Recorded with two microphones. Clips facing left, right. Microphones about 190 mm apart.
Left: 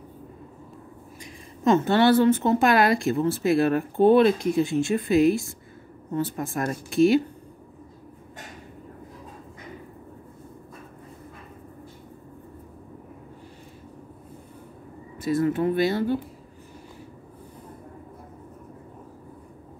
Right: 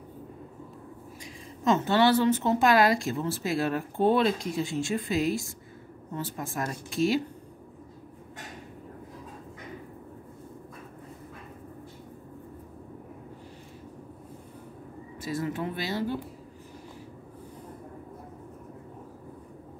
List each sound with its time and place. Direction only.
1.2 s a woman's voice: 55° left (ahead or behind)
15.2 s a woman's voice: 55° left (ahead or behind)